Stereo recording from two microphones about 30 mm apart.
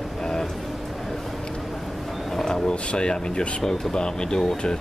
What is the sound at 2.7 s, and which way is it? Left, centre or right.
Speech, left.